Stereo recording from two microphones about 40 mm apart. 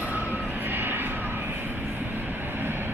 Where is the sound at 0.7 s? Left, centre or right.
Right.